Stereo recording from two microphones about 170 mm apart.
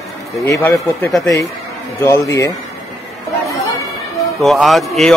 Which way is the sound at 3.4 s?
20° left (ahead or behind).